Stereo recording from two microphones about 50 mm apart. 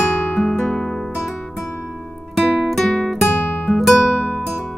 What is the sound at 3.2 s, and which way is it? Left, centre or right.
Music, centre.